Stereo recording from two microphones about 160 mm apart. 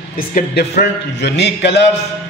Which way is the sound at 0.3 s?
65° left (ahead or behind).